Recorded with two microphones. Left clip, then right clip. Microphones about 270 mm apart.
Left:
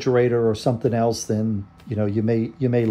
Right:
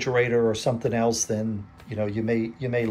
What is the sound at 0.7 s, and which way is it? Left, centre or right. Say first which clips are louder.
Speech: left 2 dB; left.